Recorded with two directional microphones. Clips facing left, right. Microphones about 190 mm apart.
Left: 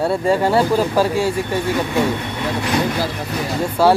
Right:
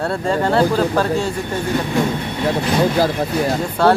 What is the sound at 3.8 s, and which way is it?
Speech, 5° left (ahead or behind).